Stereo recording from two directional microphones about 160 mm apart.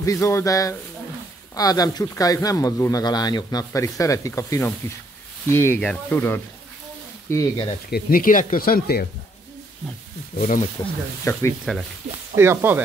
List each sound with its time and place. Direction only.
0.0 s speech: 20° left (ahead or behind)
7.9 s speech: 65° left (ahead or behind)
10.8 s speech: 25° left (ahead or behind)
11.7 s speech: 5° left (ahead or behind)
12.4 s speech: 15° right (ahead or behind)